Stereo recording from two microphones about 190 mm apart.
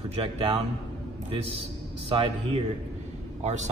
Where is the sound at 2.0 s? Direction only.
25° right (ahead or behind).